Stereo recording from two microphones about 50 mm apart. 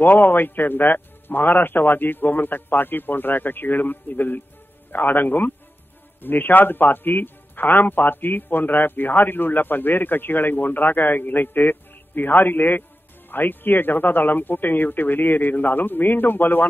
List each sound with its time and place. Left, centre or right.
0.0 s a man's voice: left